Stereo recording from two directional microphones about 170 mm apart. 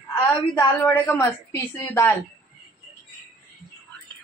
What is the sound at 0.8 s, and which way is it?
Speech, 15° left (ahead or behind).